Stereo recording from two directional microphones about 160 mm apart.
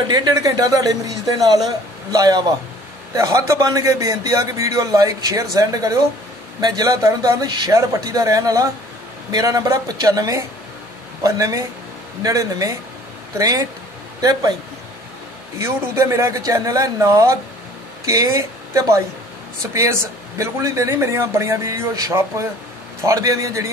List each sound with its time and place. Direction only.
0.1 s a man's voice: 20° right (ahead or behind)
15.6 s a man's voice: 15° right (ahead or behind)